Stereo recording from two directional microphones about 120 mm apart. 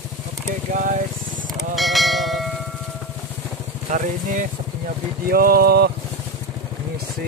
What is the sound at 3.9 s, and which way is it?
Speech, 90° right.